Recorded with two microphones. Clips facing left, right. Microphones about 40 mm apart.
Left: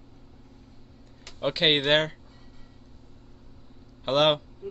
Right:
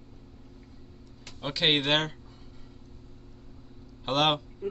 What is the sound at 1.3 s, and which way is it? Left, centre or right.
Speech, left.